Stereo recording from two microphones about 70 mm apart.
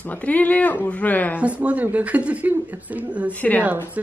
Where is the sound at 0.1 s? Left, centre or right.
Left.